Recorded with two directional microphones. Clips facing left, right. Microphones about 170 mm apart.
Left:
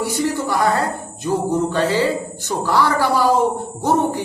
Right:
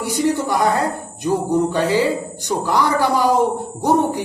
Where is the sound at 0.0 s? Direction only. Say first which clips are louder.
Right 2 dB; 15° right (ahead or behind).